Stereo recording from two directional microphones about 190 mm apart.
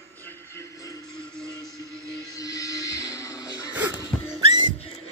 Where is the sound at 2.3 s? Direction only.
20° left (ahead or behind).